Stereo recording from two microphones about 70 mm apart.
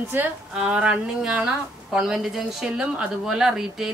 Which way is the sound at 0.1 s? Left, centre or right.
Right.